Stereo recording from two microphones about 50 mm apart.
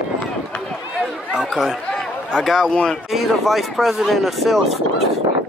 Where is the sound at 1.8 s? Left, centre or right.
Centre.